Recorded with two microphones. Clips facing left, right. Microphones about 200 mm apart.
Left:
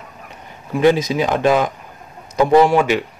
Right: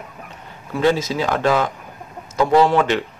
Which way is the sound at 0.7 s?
15° left (ahead or behind).